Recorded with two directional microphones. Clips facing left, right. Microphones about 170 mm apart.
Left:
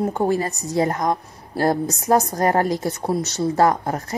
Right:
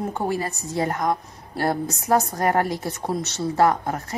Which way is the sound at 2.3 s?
35° left (ahead or behind).